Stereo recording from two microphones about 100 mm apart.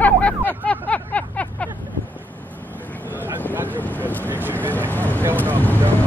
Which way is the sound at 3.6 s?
15° left (ahead or behind).